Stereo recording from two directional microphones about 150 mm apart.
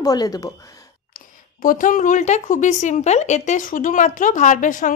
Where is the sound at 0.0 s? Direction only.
25° left (ahead or behind).